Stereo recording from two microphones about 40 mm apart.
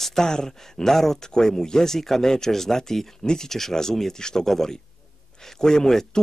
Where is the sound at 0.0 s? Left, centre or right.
Centre.